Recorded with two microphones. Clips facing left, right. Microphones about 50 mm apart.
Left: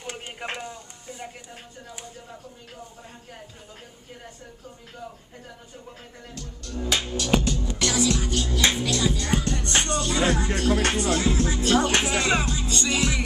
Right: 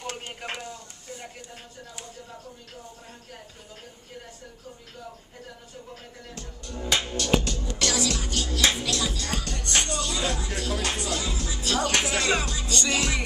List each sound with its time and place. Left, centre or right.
0.0 s a sound: centre
6.3 s music: right
6.9 s music: centre
7.8 s music: centre
9.1 s music: left; by 13.2 s centre